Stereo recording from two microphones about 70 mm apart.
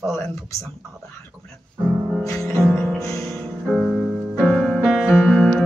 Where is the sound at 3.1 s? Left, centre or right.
Centre.